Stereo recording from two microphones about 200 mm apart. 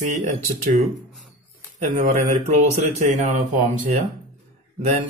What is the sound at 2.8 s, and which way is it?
Mantra, 35° right (ahead or behind).